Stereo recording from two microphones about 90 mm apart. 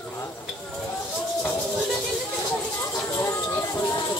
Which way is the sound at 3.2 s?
30° left (ahead or behind).